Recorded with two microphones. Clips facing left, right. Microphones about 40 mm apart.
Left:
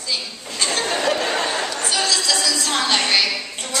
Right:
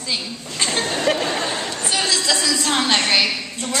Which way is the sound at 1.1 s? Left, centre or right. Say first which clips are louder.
Right 2 dB; right.